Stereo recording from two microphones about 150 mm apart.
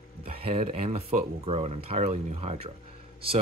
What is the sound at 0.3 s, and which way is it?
Speech, 40° right (ahead or behind).